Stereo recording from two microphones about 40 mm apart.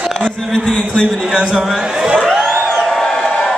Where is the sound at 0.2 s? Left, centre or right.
Centre.